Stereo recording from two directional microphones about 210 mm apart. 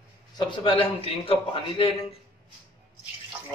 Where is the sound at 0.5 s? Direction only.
25° left (ahead or behind).